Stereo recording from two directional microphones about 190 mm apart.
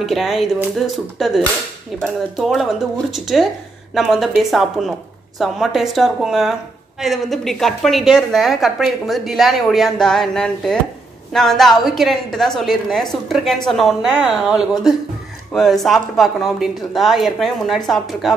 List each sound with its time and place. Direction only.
0.0 s a woman's voice: centre (ahead or behind)